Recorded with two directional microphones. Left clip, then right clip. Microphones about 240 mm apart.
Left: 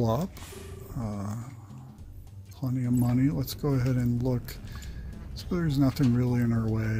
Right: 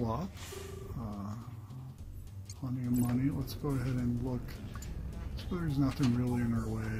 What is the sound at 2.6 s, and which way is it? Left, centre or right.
Speech, left.